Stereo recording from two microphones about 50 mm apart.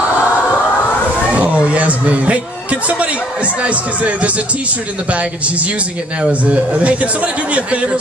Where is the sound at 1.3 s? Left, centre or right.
Right.